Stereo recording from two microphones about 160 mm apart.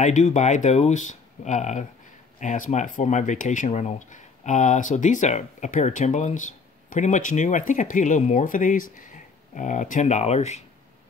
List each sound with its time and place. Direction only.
0.0 s speech: 50° left (ahead or behind)